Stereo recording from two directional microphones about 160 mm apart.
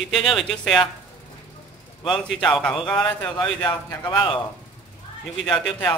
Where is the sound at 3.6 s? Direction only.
25° left (ahead or behind).